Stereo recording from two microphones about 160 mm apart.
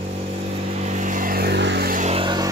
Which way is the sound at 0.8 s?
50° right (ahead or behind).